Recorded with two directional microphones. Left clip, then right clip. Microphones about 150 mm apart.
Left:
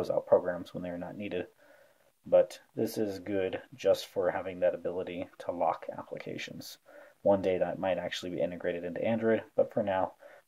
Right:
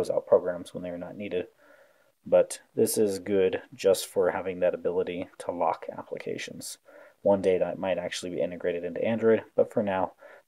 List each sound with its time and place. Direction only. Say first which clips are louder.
0.0 s speech: right 3 dB; 15° right (ahead or behind)
2.2 s speech: right 3 dB; 40° right (ahead or behind)